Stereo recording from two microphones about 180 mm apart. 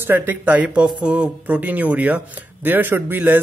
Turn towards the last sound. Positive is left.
turn(degrees=-10)  # may be behind; listen again after turning